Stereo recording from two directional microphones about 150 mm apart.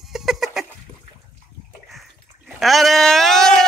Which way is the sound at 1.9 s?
Centre (ahead or behind).